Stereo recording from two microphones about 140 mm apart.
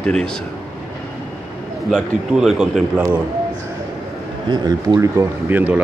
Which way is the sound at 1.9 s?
Centre (ahead or behind).